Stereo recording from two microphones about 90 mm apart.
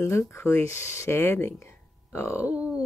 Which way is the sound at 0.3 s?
30° left (ahead or behind).